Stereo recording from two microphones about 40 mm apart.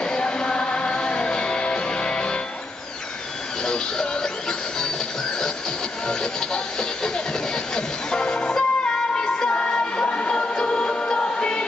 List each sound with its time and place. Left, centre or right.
0.0 s music: centre
3.6 s music: left
6.0 s speech: centre
7.5 s music: centre